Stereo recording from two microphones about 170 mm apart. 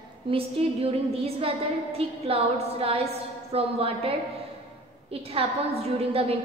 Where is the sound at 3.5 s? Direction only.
35° right (ahead or behind).